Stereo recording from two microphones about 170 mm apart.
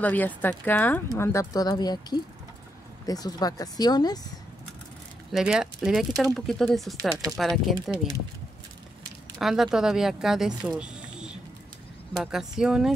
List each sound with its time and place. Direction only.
0.0 s speech: 10° left (ahead or behind)
5.3 s speech: 5° right (ahead or behind)
9.4 s speech: centre (ahead or behind)